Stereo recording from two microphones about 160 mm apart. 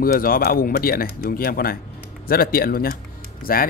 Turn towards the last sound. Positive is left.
turn(degrees=65)  # may be behind; listen again after turning